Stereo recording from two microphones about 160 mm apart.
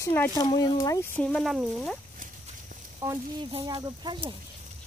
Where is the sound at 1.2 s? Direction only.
Centre (ahead or behind).